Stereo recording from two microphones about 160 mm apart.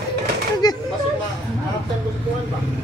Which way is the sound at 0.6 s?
25° left (ahead or behind).